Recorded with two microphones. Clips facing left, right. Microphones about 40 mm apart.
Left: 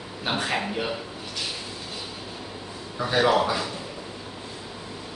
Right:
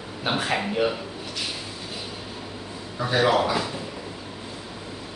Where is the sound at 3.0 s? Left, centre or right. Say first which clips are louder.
Even; centre.